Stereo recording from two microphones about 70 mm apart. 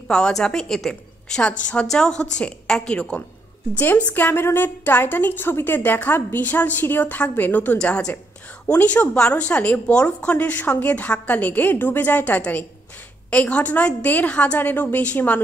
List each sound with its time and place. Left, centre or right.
0.1 s a woman's voice: centre
1.4 s a woman's voice: centre
3.7 s a woman's voice: left
7.8 s a woman's voice: centre